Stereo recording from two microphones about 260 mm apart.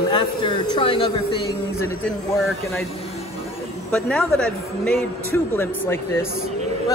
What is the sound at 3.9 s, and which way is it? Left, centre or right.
A man's voice, centre.